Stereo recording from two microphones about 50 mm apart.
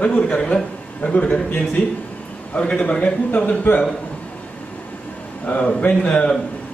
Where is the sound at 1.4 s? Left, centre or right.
Left.